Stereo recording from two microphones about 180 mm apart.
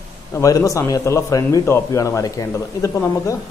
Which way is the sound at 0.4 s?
20° left (ahead or behind).